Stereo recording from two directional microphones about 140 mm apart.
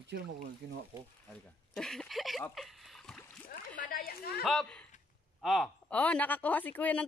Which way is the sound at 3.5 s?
85° left.